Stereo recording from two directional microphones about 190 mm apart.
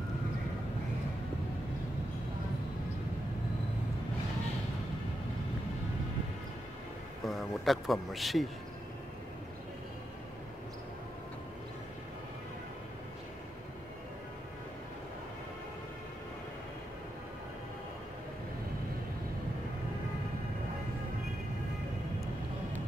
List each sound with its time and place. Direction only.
7.2 s speech: centre (ahead or behind)